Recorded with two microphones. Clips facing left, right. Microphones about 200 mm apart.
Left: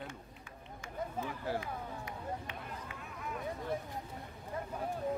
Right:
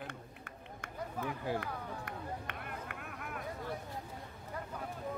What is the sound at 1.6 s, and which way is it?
Run, 60° right (ahead or behind).